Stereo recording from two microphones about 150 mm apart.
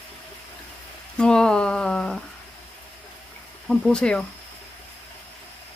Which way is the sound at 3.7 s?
5° left (ahead or behind).